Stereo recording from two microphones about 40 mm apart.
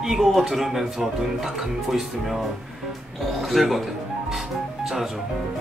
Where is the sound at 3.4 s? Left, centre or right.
Centre.